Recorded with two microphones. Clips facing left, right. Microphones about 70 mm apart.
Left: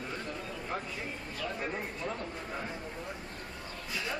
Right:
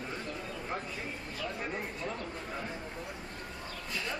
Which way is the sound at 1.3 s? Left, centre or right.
Centre.